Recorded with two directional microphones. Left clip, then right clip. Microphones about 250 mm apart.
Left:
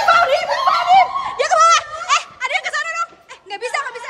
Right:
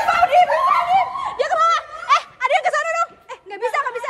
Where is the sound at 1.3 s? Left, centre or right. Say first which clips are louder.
Left 4 dB; centre.